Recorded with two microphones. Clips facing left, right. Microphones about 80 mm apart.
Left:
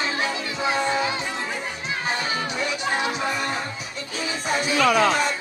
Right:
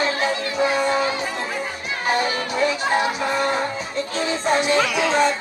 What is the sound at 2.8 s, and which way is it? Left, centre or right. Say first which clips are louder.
Speech: right 4 dB; right.